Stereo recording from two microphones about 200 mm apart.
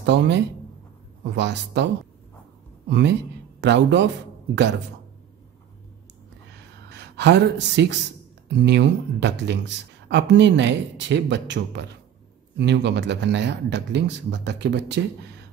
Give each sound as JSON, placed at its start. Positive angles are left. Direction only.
{"t": 0.0, "sound": "speech", "side_deg": -60}
{"t": 2.9, "sound": "speech", "side_deg": -60}
{"t": 6.5, "sound": "a sound", "side_deg": -60}
{"t": 8.5, "sound": "speech", "side_deg": -60}